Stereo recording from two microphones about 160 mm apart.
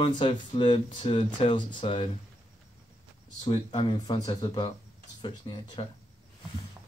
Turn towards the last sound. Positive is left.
turn(degrees=30)  # may be behind; listen again after turning